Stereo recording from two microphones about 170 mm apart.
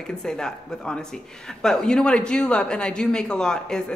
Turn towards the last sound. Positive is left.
turn(degrees=5)  # may be behind; listen again after turning